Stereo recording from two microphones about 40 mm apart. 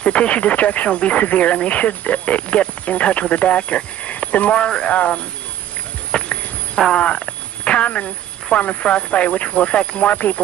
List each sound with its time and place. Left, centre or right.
0.0 s speech: left
4.6 s speech: left
4.9 s speech: left
6.1 s a sound: left
6.9 s speech: left
10.0 s speech: left